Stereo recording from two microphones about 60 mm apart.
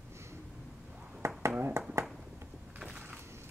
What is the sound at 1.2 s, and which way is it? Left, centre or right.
Finger snapping, right.